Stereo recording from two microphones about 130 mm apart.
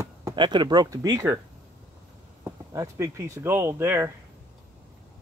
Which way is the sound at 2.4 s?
25° right (ahead or behind).